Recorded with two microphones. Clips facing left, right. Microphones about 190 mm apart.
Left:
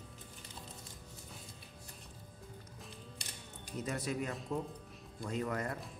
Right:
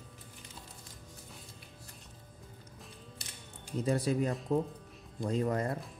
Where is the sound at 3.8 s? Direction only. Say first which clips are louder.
Right 8 dB; 30° right (ahead or behind).